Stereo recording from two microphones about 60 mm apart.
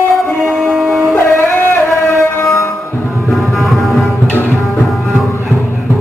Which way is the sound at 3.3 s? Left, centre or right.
Centre.